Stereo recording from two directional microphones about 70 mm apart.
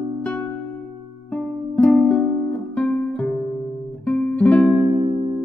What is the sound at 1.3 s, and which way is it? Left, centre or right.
Music, centre.